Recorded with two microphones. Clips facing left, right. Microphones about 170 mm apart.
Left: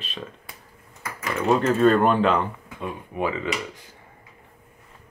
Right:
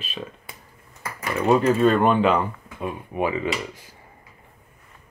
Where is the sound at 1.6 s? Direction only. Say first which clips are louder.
Left 1 dB; 5° right (ahead or behind).